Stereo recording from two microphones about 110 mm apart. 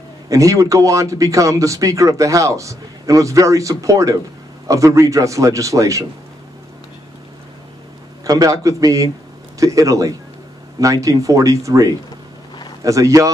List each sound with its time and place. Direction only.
0.3 s speech: 30° right (ahead or behind)
8.2 s speech: 30° right (ahead or behind)